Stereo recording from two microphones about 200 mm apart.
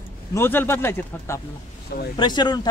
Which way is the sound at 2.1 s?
20° left (ahead or behind).